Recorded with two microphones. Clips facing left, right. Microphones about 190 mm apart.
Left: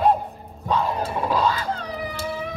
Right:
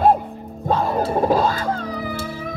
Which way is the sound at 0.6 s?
45° right (ahead or behind).